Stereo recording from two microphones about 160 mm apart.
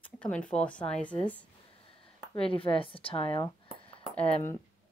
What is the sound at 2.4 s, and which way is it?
A woman's voice, 35° left (ahead or behind).